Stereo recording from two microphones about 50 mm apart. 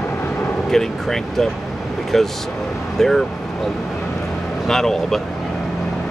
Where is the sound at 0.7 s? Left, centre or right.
Centre.